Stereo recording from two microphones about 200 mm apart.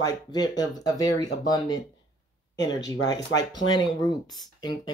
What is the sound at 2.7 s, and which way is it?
Speech, 20° left (ahead or behind).